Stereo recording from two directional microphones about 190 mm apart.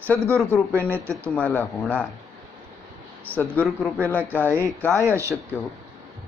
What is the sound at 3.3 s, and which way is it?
Speech, 10° left (ahead or behind).